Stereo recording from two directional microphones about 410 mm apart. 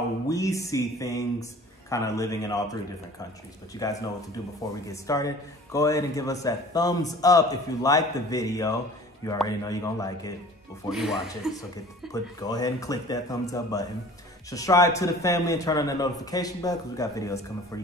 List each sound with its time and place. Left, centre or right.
0.3 s a man's voice: centre
3.8 s a man's voice: centre